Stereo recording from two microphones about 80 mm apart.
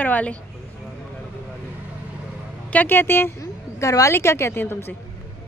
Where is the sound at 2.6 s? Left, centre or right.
Left.